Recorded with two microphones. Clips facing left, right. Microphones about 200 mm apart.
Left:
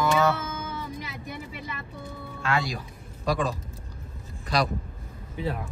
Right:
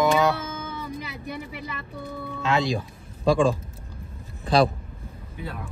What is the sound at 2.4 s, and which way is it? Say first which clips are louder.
Speech: right 4 dB; 25° right (ahead or behind).